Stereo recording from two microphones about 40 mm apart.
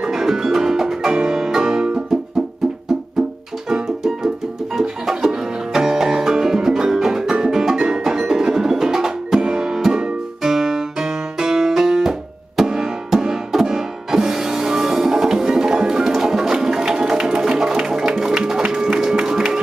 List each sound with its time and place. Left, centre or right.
0.0 s music: centre
3.6 s music: centre